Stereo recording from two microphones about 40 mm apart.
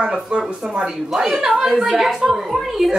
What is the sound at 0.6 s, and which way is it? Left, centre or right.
Speech, right.